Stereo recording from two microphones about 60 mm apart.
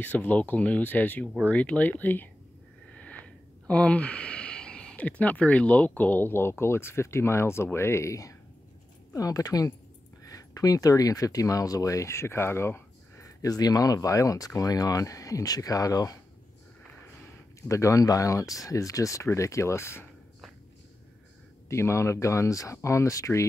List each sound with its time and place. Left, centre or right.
0.0 s speech: left
9.1 s speech: left
13.2 s speech: left
17.6 s speech: left
21.6 s speech: left